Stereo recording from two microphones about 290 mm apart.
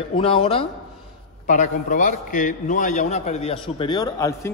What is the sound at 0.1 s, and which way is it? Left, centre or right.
A man's voice, centre.